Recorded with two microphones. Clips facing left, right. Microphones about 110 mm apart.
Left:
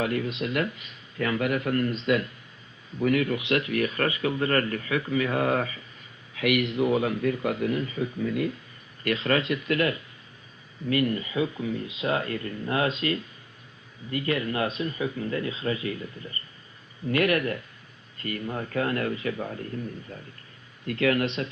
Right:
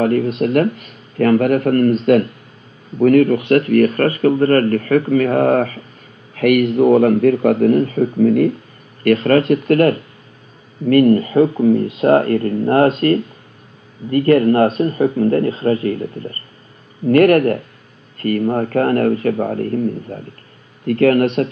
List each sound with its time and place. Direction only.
0.0 s speech: 45° right (ahead or behind)